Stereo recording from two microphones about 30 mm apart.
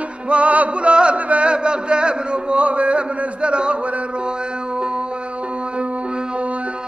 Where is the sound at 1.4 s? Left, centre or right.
Right.